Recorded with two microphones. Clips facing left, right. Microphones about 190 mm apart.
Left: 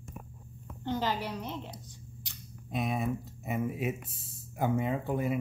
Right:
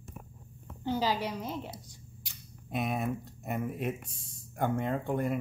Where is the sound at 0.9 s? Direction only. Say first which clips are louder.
Right 2 dB; 10° right (ahead or behind).